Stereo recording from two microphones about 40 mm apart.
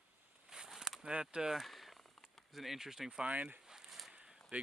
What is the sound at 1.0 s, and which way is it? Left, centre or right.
Speech, right.